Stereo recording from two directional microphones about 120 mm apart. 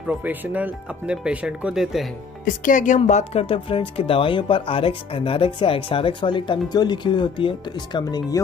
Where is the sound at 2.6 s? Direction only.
90° left.